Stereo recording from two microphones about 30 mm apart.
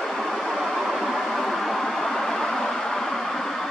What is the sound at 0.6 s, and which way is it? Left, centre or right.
Vehicle, centre.